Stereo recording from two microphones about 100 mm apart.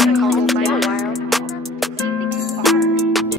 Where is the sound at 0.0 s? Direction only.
Centre (ahead or behind).